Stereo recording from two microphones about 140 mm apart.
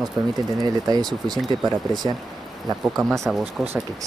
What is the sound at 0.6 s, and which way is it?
Speech, 30° right (ahead or behind).